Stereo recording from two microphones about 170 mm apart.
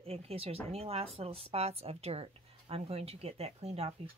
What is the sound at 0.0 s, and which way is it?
A woman's voice, 35° right (ahead or behind).